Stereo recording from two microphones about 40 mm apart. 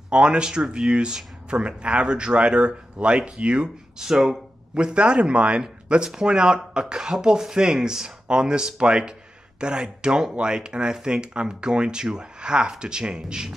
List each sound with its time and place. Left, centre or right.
0.1 s speech: right
4.0 s speech: centre
4.7 s speech: right